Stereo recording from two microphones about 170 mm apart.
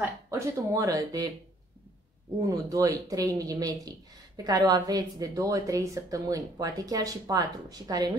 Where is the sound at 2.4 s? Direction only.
20° right (ahead or behind).